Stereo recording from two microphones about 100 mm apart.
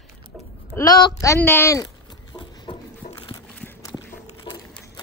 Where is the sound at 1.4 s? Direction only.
20° left (ahead or behind).